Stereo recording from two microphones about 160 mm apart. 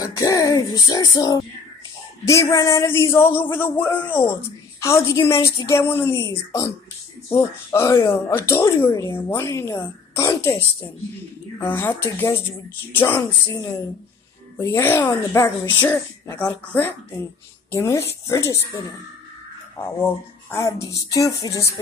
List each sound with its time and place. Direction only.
0.0 s music: 20° left (ahead or behind)
2.2 s speech: 20° left (ahead or behind)
11.6 s speech: 15° left (ahead or behind)
20.8 s music: 20° left (ahead or behind)